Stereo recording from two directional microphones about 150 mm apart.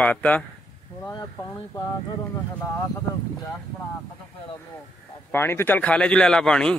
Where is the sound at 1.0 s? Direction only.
20° left (ahead or behind).